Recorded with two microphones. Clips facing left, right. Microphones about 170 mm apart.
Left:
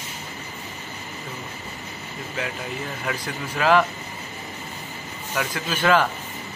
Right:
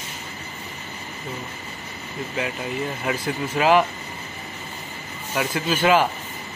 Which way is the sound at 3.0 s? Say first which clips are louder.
Right 3 dB; 15° right (ahead or behind).